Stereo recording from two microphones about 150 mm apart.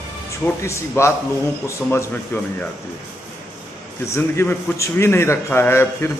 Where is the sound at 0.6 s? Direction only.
20° left (ahead or behind).